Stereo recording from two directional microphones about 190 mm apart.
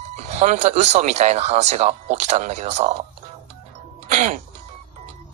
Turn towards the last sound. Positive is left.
turn(degrees=-40)  # may be behind; listen again after turning